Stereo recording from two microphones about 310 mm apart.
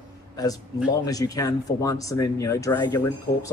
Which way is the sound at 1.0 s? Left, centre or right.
Centre.